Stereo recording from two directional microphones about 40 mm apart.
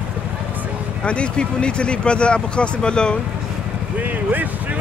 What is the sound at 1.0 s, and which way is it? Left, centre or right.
Speech, left.